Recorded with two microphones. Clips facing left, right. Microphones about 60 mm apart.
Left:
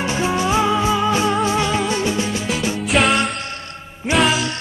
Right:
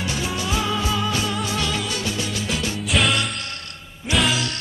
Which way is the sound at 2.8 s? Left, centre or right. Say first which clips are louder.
Left 5 dB; centre.